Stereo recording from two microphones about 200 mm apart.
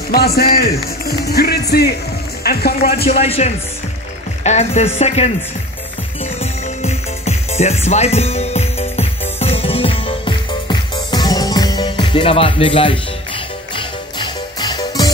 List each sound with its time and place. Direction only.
0.1 s speech: 50° left (ahead or behind)
3.1 s speech: 30° left (ahead or behind)
6.4 s music: 35° left (ahead or behind)